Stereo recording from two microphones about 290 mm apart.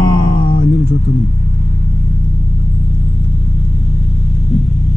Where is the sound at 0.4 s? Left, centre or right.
Left.